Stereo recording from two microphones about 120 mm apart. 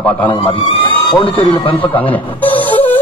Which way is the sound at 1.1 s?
45° left (ahead or behind).